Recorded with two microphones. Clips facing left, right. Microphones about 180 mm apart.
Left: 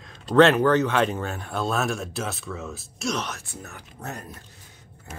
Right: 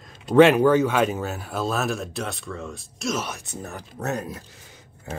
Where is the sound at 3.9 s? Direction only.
85° right.